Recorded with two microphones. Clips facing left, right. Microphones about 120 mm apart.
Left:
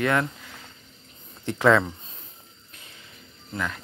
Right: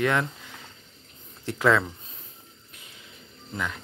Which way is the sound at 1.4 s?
5° right (ahead or behind).